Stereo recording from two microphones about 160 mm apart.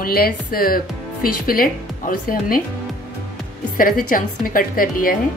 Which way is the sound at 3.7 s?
60° left (ahead or behind).